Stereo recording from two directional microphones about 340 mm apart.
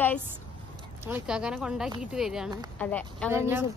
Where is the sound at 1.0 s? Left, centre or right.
Centre.